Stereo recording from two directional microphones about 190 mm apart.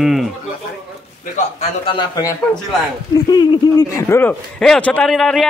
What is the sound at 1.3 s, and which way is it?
A man's voice, 30° left (ahead or behind).